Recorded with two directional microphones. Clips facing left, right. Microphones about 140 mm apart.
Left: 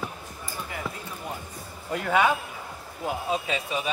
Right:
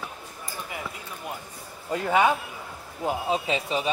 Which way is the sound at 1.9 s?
25° right (ahead or behind).